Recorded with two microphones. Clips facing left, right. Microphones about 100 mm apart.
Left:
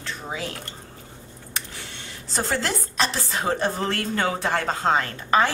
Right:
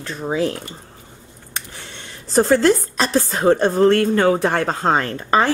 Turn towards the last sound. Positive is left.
turn(degrees=-40)  # may be behind; listen again after turning